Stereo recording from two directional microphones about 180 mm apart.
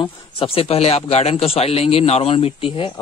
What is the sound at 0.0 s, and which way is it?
Speech, 30° left (ahead or behind).